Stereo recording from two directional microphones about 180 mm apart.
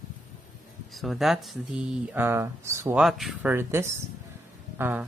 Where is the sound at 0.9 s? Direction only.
Centre (ahead or behind).